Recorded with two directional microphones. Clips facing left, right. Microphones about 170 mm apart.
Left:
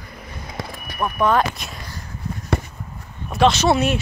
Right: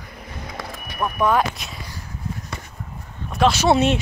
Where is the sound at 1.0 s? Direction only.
10° right (ahead or behind).